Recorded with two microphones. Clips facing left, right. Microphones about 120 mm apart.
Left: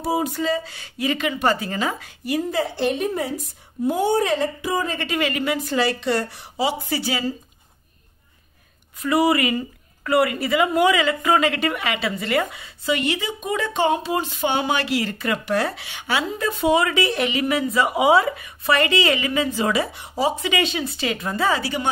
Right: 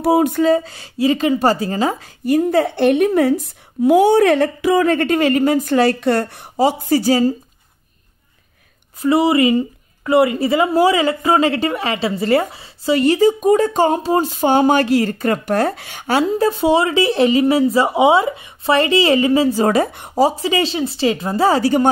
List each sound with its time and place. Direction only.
0.0 s a woman's voice: 60° right (ahead or behind)
3.8 s speech: 85° right
4.9 s a woman's voice: 45° right (ahead or behind)
9.0 s speech: 25° right (ahead or behind); by 21.9 s 45° right (ahead or behind)